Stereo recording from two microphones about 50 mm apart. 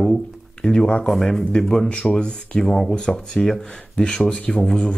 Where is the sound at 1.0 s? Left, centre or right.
Centre.